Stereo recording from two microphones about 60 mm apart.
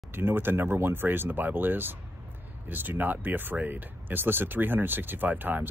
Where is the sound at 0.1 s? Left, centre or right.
Right.